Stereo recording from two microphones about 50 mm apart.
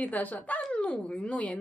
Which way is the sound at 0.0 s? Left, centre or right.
Left.